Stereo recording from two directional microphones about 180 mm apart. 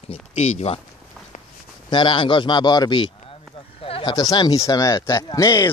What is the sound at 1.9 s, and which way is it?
Speech, 25° left (ahead or behind).